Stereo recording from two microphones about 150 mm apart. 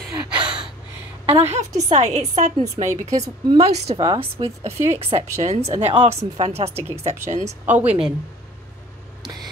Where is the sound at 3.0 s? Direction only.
25° right (ahead or behind).